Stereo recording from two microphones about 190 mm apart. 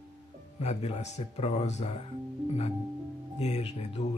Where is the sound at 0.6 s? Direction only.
35° left (ahead or behind).